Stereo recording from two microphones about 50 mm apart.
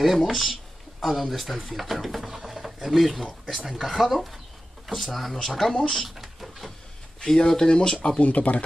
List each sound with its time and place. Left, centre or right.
0.0 s speech: centre
6.0 s speech: centre
7.2 s speech: centre
8.2 s speech: left